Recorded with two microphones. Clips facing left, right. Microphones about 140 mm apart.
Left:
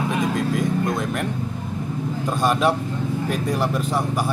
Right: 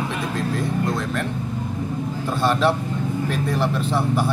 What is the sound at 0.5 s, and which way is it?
Speech, 15° left (ahead or behind).